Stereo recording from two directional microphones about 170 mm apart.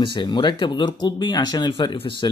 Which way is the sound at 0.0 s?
25° left (ahead or behind).